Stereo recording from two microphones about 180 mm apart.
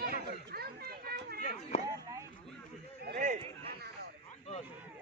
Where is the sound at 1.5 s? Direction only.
35° left (ahead or behind).